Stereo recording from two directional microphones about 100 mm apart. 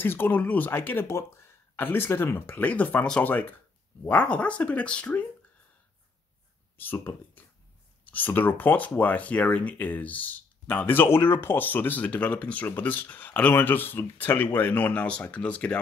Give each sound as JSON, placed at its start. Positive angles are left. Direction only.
{"t": 0.0, "sound": "speech", "side_deg": 20}
{"t": 6.8, "sound": "speech", "side_deg": 20}